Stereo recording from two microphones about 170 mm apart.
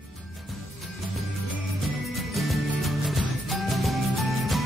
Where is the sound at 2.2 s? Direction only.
Centre (ahead or behind).